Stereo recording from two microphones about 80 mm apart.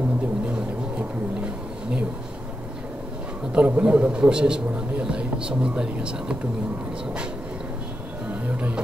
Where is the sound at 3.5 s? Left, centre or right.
Centre.